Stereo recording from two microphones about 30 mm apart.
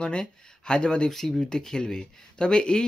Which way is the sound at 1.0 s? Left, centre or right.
Centre.